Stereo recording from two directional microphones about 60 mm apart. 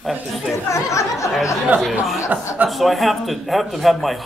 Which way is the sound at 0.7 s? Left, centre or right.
Left.